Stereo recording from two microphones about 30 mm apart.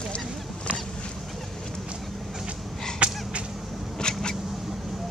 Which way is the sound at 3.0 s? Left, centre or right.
Right.